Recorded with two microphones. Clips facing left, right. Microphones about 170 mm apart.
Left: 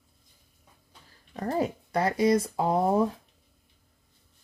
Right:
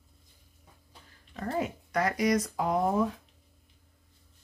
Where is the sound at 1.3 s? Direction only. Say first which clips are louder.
Left 4 dB; 35° left (ahead or behind).